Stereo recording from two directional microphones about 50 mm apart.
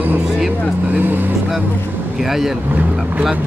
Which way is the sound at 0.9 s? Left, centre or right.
Right.